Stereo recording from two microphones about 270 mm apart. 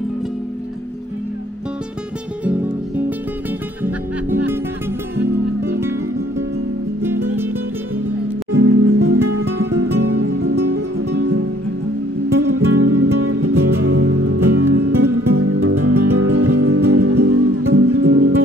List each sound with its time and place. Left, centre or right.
3.8 s music: centre
5.8 s music: centre
8.5 s music: right
9.9 s music: right
12.4 s music: right
13.6 s music: right
17.2 s music: right